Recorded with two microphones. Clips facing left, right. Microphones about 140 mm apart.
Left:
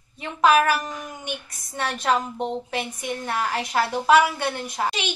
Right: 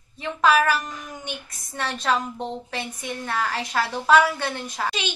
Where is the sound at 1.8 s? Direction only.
15° left (ahead or behind).